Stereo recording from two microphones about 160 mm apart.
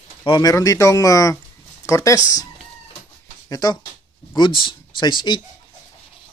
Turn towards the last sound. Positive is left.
turn(degrees=30)  # may be behind; listen again after turning